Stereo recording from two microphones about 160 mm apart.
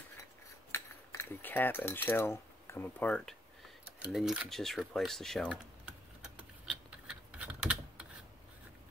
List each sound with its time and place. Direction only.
0.2 s cutlery: 15° left (ahead or behind)
4.0 s speech: centre (ahead or behind)
6.2 s typing: 5° right (ahead or behind)